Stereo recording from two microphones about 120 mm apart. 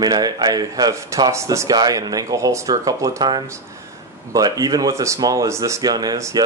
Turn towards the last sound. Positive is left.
turn(degrees=-30)  # may be behind; listen again after turning